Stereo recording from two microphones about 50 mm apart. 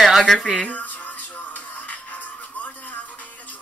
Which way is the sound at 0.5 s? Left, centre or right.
Left.